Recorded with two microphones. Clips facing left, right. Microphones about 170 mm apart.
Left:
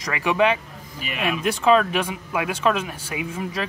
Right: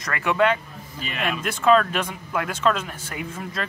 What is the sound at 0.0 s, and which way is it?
Speech, 15° left (ahead or behind).